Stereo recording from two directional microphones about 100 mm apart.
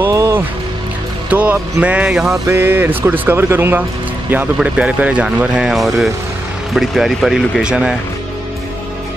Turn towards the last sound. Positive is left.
turn(degrees=-10)  # may be behind; listen again after turning